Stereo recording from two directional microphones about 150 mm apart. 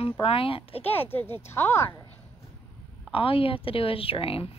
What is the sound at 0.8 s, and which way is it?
Speech, 15° left (ahead or behind).